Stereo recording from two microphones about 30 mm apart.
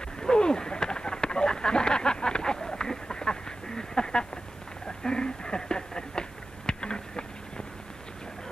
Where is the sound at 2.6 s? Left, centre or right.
Centre.